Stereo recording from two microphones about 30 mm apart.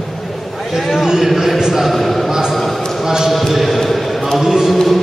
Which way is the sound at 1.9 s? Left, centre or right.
Centre.